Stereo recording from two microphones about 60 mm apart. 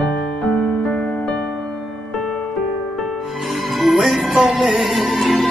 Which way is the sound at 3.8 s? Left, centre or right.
Centre.